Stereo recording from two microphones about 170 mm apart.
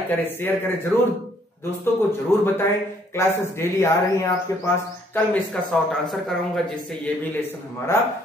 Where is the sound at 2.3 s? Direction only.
15° left (ahead or behind).